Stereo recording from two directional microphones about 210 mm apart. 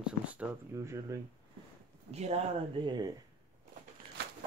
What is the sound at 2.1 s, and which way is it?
Speech, 30° right (ahead or behind).